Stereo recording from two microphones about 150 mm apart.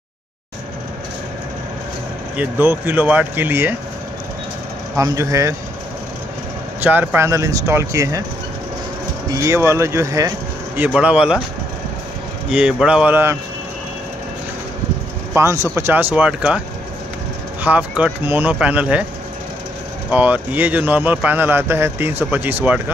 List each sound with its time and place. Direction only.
2.3 s a man's voice: 15° right (ahead or behind)
4.9 s speech: 20° right (ahead or behind)
6.8 s speech: 10° right (ahead or behind)
9.3 s speech: 20° right (ahead or behind)
11.0 s a man's voice: 10° right (ahead or behind)
12.4 s a man's voice: 5° right (ahead or behind)
15.3 s a man's voice: 20° right (ahead or behind)
17.6 s a man's voice: 10° right (ahead or behind)
20.1 s a man's voice: 10° right (ahead or behind)